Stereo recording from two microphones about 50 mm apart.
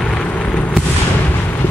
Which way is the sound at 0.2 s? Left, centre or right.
Left.